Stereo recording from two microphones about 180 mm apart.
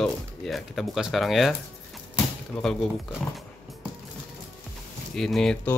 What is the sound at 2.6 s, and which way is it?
Speech, 5° left (ahead or behind).